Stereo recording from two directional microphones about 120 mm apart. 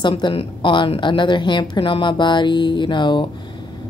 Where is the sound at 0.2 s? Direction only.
50° left (ahead or behind).